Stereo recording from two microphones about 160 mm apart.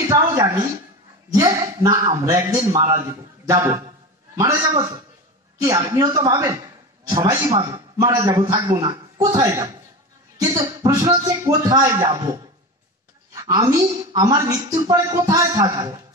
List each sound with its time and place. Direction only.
0.0 s a woman's voice: 20° right (ahead or behind)